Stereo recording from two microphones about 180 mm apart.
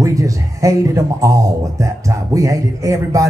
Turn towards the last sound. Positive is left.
turn(degrees=-15)  # may be behind; listen again after turning